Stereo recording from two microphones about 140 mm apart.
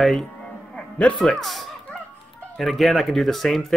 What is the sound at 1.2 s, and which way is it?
Speech, centre (ahead or behind).